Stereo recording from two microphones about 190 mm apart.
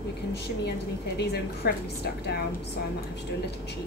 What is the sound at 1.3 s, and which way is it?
A woman's voice, 55° left (ahead or behind).